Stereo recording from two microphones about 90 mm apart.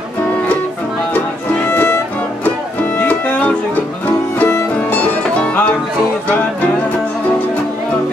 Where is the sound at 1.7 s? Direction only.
20° left (ahead or behind).